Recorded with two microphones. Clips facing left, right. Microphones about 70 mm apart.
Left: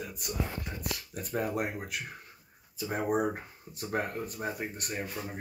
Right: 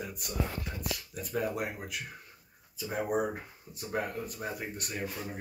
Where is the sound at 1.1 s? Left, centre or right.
Left.